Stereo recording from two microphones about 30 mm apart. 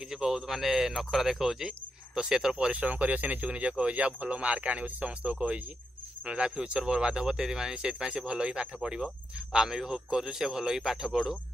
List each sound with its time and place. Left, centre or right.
0.1 s speech: centre
2.1 s speech: right
2.5 s speech: right
2.8 s speech: right
3.4 s speech: right
6.2 s speech: right
9.6 s speech: centre